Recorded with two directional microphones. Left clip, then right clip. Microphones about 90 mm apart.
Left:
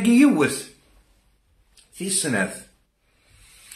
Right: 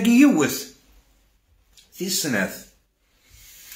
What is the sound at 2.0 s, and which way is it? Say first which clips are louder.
Speech: even; 25° left (ahead or behind).